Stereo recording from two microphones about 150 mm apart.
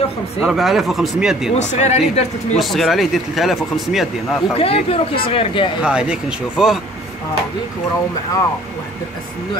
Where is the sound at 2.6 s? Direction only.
Centre (ahead or behind).